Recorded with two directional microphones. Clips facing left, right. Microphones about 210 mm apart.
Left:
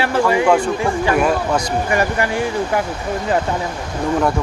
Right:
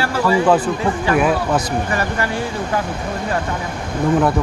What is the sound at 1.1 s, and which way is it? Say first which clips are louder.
Speech: right 2 dB; 5° right (ahead or behind).